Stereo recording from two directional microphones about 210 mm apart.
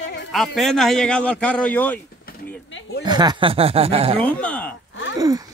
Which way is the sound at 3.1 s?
20° right (ahead or behind).